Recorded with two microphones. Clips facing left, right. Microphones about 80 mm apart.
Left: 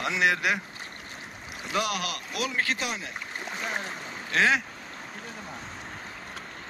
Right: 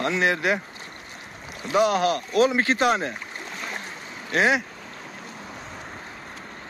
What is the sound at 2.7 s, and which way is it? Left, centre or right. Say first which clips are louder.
Speech: right 12 dB; right.